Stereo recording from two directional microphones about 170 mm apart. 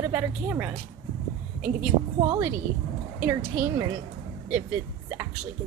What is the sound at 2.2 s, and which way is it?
A woman's voice, 20° right (ahead or behind).